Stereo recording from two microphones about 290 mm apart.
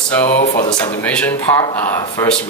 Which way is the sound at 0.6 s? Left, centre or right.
Centre.